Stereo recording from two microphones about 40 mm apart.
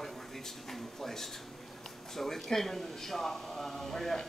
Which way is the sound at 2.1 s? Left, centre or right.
Centre.